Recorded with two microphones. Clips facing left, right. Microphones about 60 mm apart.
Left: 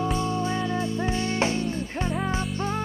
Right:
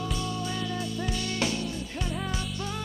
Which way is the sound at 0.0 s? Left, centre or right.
Left.